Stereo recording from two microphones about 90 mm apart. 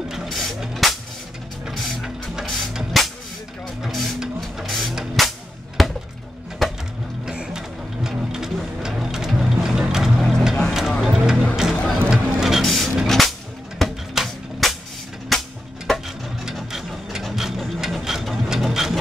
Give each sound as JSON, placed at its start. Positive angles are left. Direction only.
{"t": 0.1, "sound": "a sound", "side_deg": 0}
{"t": 1.7, "sound": "mechanisms", "side_deg": 0}
{"t": 3.8, "sound": "printer", "side_deg": 0}
{"t": 5.8, "sound": "chop", "side_deg": 0}
{"t": 6.6, "sound": "a sound", "side_deg": 0}
{"t": 7.2, "sound": "music", "side_deg": -5}
{"t": 8.8, "sound": "vehicle", "side_deg": -5}
{"t": 11.7, "sound": "music", "side_deg": 5}
{"t": 12.1, "sound": "a sound", "side_deg": -5}
{"t": 13.7, "sound": "music", "side_deg": 0}
{"t": 16.4, "sound": "ratchet", "side_deg": -5}